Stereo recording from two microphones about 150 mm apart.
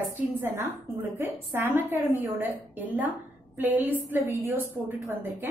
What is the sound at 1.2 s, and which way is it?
Speech, 15° right (ahead or behind).